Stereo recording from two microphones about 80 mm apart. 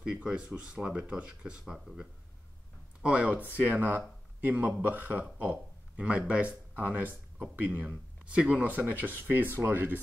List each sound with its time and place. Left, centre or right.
0.0 s a man's voice: centre; by 9.9 s right